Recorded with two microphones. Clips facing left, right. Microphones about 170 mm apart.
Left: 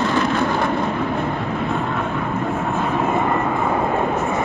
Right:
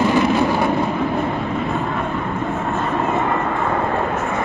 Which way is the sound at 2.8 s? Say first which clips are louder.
Even; 5° left (ahead or behind).